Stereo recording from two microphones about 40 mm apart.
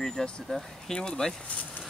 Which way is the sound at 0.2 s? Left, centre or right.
Centre.